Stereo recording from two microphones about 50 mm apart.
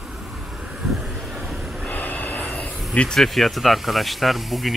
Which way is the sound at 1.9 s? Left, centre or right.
Left.